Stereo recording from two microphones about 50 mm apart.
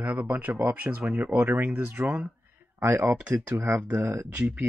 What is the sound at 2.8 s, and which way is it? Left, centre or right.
Speech, right.